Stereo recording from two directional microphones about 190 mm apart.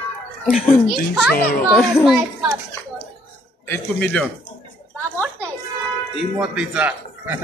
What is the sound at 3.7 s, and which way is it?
Speech, 5° left (ahead or behind).